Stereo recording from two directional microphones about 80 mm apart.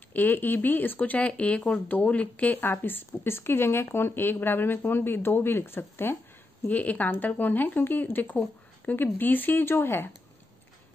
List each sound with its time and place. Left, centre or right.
0.1 s speech: left